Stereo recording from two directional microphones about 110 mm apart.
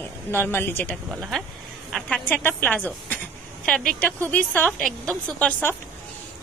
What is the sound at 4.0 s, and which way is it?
A woman's voice, 15° left (ahead or behind).